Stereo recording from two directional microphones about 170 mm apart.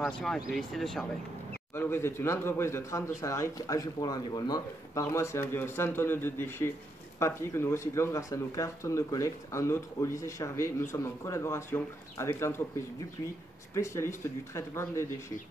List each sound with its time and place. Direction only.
0.0 s speech: centre (ahead or behind)
1.8 s speech: 15° left (ahead or behind)
13.7 s speech: 15° left (ahead or behind)